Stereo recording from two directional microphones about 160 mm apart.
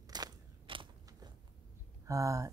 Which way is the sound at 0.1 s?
30° right (ahead or behind).